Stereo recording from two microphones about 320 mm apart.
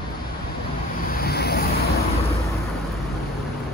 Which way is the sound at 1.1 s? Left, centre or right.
Left.